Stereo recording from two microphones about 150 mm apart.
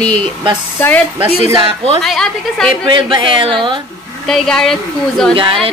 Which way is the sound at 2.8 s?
35° right (ahead or behind).